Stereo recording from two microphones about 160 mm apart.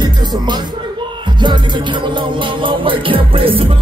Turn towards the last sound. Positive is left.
turn(degrees=-35)  # may be behind; listen again after turning